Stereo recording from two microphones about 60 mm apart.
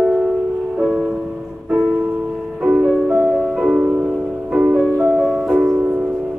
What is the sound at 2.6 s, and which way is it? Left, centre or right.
Music, right.